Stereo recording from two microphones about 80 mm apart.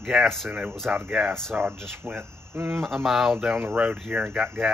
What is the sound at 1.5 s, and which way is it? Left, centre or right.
Speech, right.